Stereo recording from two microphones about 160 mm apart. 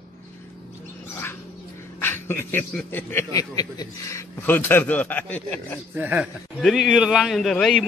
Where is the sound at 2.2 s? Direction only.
15° left (ahead or behind).